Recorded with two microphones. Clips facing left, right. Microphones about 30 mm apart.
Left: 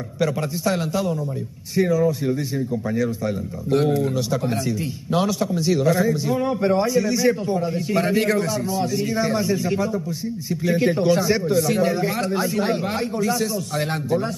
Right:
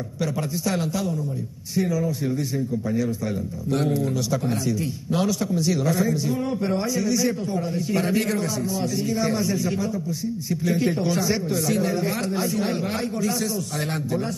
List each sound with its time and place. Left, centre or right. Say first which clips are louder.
0.2 s a man's voice: left 4 dB; centre
3.7 s a man's voice: left 4 dB; centre